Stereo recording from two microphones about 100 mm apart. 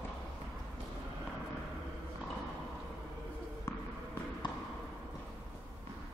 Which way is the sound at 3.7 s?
25° left (ahead or behind).